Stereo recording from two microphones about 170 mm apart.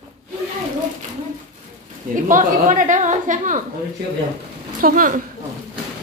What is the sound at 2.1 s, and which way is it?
A woman's voice, 50° right (ahead or behind).